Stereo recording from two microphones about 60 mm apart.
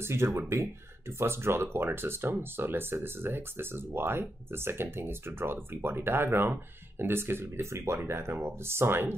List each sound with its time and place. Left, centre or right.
0.0 s speech: right